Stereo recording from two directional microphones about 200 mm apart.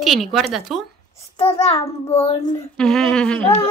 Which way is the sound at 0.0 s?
Centre (ahead or behind).